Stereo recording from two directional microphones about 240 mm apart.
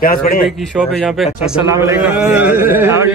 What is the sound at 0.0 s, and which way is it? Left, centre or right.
Speech, left.